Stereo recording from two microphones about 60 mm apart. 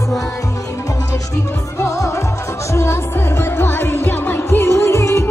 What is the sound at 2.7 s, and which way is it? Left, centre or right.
Music, left.